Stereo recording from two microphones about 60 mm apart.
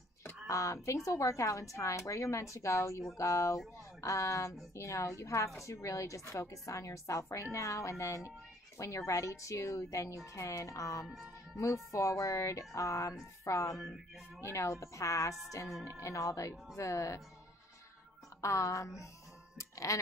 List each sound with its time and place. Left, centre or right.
0.5 s a woman's voice: left
18.4 s speech: left